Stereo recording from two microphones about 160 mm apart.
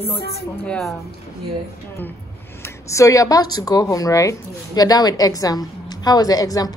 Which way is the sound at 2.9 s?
20° left (ahead or behind).